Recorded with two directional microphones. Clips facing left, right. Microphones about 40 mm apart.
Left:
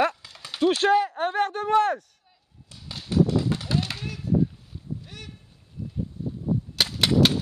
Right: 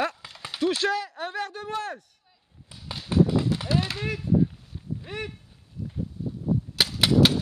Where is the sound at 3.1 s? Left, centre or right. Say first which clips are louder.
Even; right.